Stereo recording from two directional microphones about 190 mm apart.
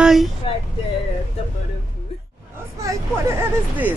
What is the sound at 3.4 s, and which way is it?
Hubbub, 10° right (ahead or behind).